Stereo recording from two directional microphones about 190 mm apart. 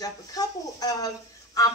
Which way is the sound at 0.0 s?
20° left (ahead or behind).